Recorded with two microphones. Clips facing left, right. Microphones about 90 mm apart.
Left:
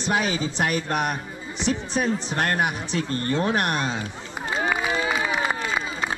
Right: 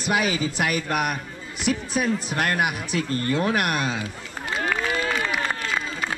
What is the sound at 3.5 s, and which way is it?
Speech, 30° left (ahead or behind).